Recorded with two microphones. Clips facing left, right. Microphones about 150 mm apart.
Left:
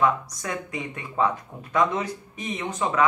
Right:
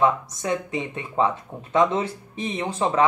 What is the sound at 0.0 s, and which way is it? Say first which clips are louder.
Speech: right 2 dB; 25° right (ahead or behind).